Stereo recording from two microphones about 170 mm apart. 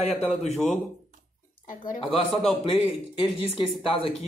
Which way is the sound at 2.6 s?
35° left (ahead or behind).